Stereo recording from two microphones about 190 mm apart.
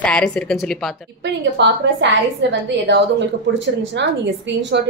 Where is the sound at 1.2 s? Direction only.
65° right (ahead or behind).